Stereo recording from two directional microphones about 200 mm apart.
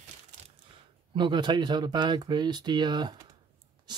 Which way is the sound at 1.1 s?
20° right (ahead or behind).